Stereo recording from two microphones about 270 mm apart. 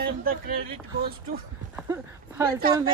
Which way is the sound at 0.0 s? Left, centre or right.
Right.